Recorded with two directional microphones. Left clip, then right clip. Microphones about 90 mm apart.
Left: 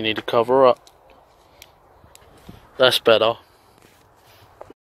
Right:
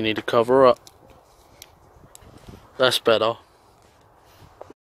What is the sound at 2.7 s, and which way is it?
Speech, 10° right (ahead or behind).